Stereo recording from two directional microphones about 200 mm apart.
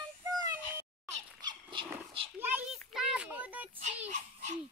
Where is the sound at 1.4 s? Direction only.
20° right (ahead or behind).